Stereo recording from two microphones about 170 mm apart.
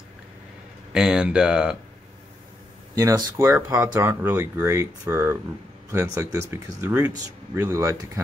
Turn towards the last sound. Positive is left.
turn(degrees=-15)  # may be behind; listen again after turning